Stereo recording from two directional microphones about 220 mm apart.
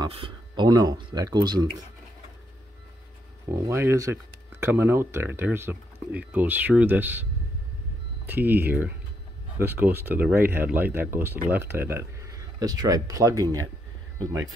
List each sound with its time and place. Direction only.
0.0 s speech: 20° right (ahead or behind)
3.6 s speech: 10° right (ahead or behind)
8.3 s speech: 10° right (ahead or behind)